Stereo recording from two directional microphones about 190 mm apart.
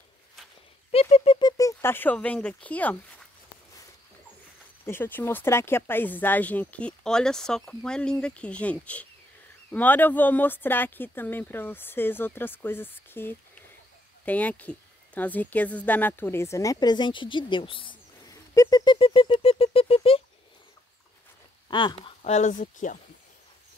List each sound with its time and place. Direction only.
0.9 s speech: 30° left (ahead or behind); by 3.0 s 10° left (ahead or behind)
4.8 s speech: 10° left (ahead or behind); by 20.2 s 30° left (ahead or behind)
21.6 s speech: 25° left (ahead or behind)
22.2 s speech: 35° left (ahead or behind)